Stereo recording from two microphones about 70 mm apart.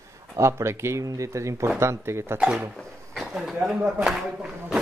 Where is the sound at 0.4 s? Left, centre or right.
Right.